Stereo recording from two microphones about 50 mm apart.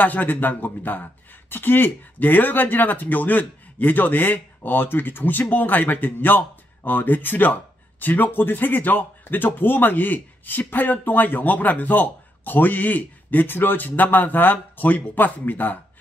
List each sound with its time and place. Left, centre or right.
0.0 s speech: left